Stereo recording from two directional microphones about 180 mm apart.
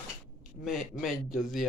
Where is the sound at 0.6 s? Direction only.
Centre (ahead or behind).